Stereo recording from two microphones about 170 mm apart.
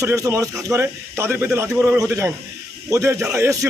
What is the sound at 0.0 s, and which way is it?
A man's voice, 20° right (ahead or behind).